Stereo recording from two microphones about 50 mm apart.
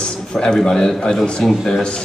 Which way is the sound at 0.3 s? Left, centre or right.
Centre.